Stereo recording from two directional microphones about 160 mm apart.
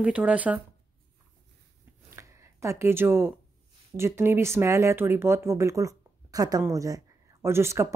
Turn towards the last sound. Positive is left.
turn(degrees=-15)  # may be behind; listen again after turning